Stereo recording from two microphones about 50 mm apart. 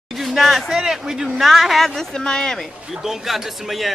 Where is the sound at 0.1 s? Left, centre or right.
Centre.